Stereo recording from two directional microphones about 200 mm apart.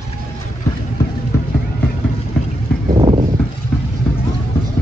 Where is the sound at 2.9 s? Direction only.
30° right (ahead or behind).